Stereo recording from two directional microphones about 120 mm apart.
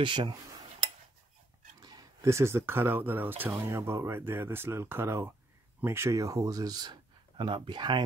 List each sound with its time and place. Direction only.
0.0 s speech: 40° right (ahead or behind)
0.3 s speech: 30° right (ahead or behind)
1.8 s speech: 30° right (ahead or behind)